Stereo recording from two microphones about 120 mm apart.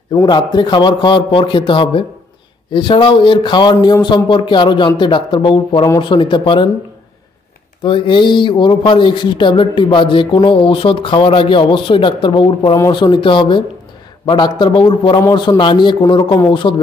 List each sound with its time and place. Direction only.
0.2 s speech: 40° left (ahead or behind)
7.8 s speech: 45° left (ahead or behind)